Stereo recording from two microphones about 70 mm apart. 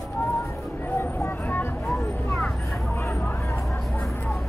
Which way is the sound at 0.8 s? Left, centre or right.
Left.